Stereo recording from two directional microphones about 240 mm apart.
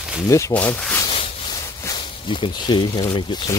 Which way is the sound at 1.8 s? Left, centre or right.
Centre.